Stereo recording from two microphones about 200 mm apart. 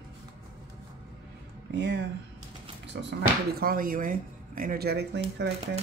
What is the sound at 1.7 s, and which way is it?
Speech, 60° right (ahead or behind).